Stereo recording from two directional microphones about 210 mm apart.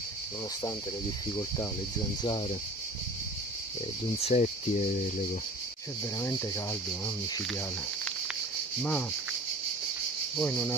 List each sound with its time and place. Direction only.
4.2 s speech: 30° left (ahead or behind)
6.1 s speech: 15° left (ahead or behind)
10.4 s cricket: 5° left (ahead or behind)